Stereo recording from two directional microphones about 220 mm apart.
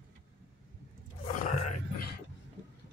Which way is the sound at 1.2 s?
35° left (ahead or behind).